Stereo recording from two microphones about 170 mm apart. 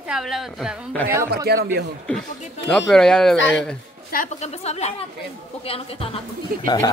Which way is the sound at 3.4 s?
90° left.